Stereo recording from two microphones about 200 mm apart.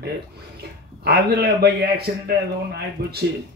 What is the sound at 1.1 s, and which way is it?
Speech, 55° right (ahead or behind).